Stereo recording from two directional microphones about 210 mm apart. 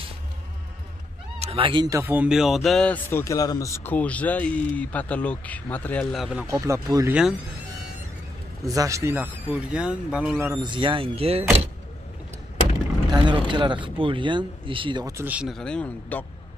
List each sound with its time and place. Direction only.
1.4 s speech: 25° right (ahead or behind); by 6.4 s centre (ahead or behind)
6.4 s speech: 15° right (ahead or behind)
8.6 s speech: 15° right (ahead or behind)
10.6 s speech: 25° right (ahead or behind)
13.1 s speech: 20° right (ahead or behind); by 16.3 s 5° left (ahead or behind)